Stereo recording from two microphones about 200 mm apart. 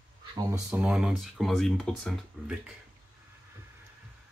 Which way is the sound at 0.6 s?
5° right (ahead or behind).